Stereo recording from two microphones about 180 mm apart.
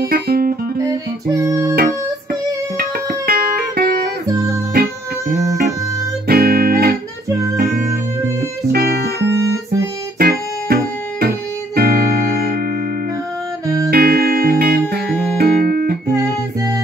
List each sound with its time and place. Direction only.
0.1 s guitar: 55° right (ahead or behind)
0.7 s music: 20° right (ahead or behind)
2.8 s music: 55° right (ahead or behind)
4.3 s music: 20° right (ahead or behind)
6.2 s music: 55° right (ahead or behind)
8.7 s music: 60° right (ahead or behind)
13.8 s music: 55° right (ahead or behind)
16.2 s music: 15° right (ahead or behind)